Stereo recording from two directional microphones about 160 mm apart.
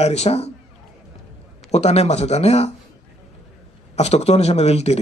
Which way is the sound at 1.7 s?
40° left (ahead or behind).